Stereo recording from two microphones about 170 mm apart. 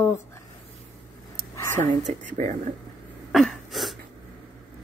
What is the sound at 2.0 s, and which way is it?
Speech, 45° right (ahead or behind).